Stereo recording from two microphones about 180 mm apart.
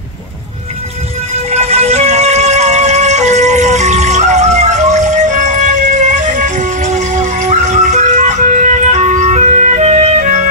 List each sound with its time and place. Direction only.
1.3 s music: 35° right (ahead or behind)